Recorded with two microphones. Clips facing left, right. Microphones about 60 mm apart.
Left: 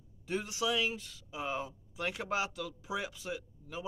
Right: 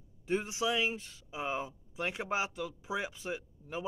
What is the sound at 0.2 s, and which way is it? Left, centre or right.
Speech, right.